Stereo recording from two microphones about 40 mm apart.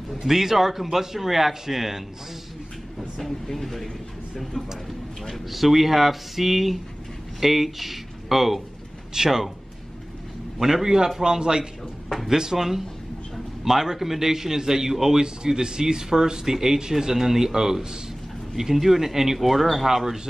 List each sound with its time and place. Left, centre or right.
0.1 s a man's voice: centre
3.0 s speech: centre
5.3 s a man's voice: centre
10.6 s a man's voice: centre